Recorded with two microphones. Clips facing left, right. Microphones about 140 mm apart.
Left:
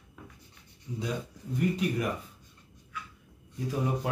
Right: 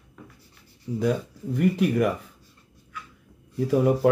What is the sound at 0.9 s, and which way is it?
Speech, 60° right (ahead or behind).